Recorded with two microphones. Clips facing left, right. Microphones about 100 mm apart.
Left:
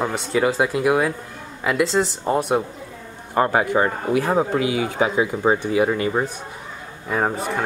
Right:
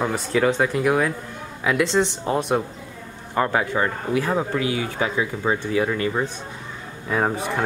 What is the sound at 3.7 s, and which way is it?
Speech, 20° left (ahead or behind).